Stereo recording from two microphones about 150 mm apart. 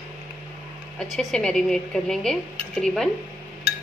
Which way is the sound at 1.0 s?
Centre (ahead or behind).